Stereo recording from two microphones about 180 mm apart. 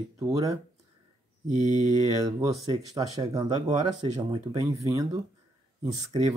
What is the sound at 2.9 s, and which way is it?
Speech, 20° right (ahead or behind).